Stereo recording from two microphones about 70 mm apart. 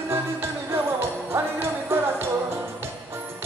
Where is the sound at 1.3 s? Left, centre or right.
Right.